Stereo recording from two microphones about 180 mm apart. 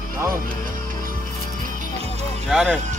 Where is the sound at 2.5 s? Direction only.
5° right (ahead or behind).